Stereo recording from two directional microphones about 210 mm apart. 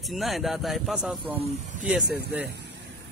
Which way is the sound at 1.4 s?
35° right (ahead or behind).